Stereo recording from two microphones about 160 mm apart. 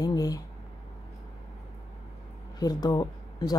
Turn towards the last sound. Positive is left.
turn(degrees=25)  # may be behind; listen again after turning